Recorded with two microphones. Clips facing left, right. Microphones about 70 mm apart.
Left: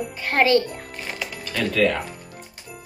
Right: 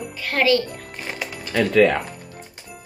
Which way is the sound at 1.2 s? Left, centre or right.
Right.